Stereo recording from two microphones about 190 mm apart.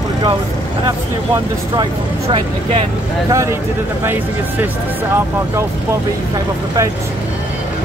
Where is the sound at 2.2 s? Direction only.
30° right (ahead or behind).